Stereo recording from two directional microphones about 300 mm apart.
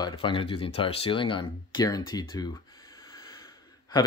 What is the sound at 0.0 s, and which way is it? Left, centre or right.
Speech, centre.